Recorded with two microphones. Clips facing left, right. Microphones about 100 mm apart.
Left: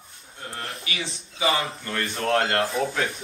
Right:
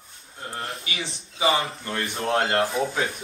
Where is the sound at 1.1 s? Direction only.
25° right (ahead or behind).